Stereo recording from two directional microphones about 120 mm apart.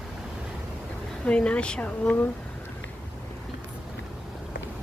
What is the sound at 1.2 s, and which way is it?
Speech, 10° left (ahead or behind).